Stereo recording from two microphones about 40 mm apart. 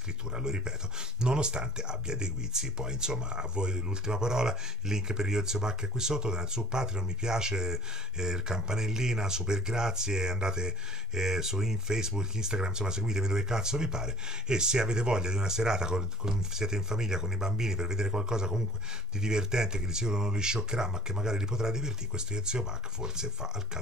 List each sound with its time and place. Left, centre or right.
0.3 s speech: centre